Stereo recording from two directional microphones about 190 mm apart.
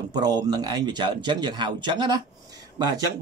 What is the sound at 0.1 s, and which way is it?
Speech, 20° right (ahead or behind).